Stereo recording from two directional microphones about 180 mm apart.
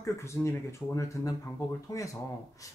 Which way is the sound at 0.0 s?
15° left (ahead or behind).